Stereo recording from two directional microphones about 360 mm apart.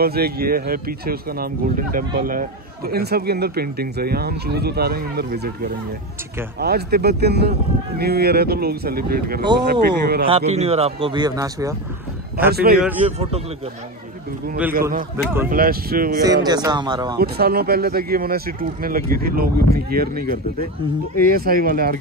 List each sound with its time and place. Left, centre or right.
0.0 s a man's voice: right; by 11.7 s centre
12.4 s speech: right
14.7 s speech: right
16.4 s a man's voice: centre
17.2 s speech: right
21.3 s speech: right